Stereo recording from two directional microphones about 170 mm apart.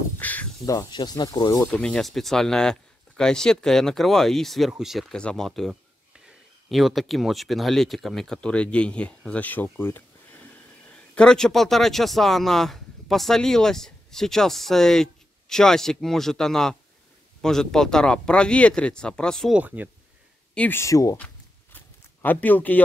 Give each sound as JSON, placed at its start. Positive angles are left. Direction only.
{"t": 0.2, "sound": "speech", "side_deg": 10}
{"t": 0.7, "sound": "speech", "side_deg": 20}
{"t": 1.7, "sound": "a man's voice", "side_deg": 5}
{"t": 19.6, "sound": "speech", "side_deg": -10}
{"t": 20.5, "sound": "speech", "side_deg": 10}
{"t": 21.7, "sound": "a sound", "side_deg": 10}